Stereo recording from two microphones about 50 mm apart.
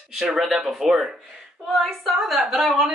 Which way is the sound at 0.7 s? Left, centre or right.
Centre.